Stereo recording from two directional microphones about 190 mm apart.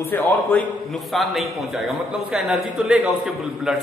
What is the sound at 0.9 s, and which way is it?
A man's voice, centre (ahead or behind).